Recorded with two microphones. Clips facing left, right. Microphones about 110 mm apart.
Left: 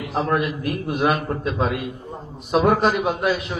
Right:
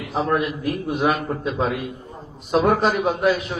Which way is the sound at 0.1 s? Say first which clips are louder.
Even; centre (ahead or behind).